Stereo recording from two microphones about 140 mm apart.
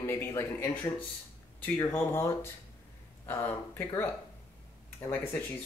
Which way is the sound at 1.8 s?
20° left (ahead or behind).